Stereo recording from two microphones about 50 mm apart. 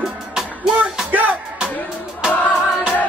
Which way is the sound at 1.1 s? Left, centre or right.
Right.